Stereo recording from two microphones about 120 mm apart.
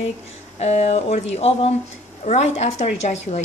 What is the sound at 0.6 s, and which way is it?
A woman's voice, 60° left (ahead or behind).